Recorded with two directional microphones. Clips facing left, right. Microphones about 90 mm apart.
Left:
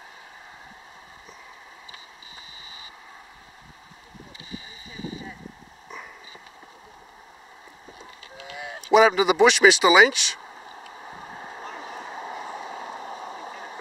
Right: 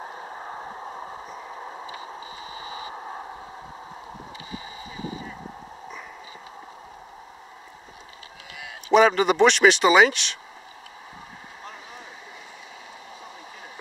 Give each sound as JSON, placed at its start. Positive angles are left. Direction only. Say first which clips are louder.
{"t": 0.0, "sound": "vehicle", "louder": "right 10 dB", "side_deg": -50}
{"t": 3.0, "sound": "a sound", "louder": "right 11 dB", "side_deg": -50}
{"t": 8.8, "sound": "speech", "louder": "even", "side_deg": 5}
{"t": 12.1, "sound": "vehicle", "louder": "left 9 dB", "side_deg": 45}